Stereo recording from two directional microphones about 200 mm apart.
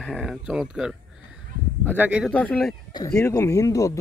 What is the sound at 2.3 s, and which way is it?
Speech, 5° left (ahead or behind).